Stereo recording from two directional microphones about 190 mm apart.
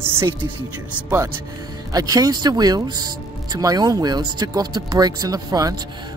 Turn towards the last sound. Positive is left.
turn(degrees=-20)  # may be behind; listen again after turning